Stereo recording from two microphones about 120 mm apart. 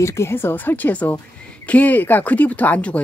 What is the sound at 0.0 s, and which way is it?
Speech, 25° left (ahead or behind).